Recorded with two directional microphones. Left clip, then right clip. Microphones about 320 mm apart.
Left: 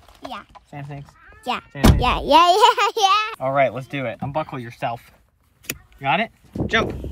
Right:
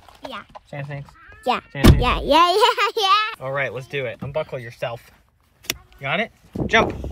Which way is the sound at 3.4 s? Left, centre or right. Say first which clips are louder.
Left 6 dB; centre.